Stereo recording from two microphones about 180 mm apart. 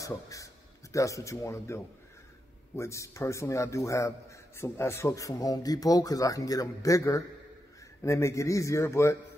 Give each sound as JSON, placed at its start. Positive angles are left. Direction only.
{"t": 0.0, "sound": "a man's voice", "side_deg": 20}